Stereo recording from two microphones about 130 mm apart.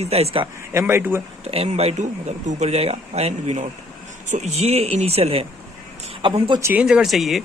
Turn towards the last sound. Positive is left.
turn(degrees=0)  # may be behind; listen again after turning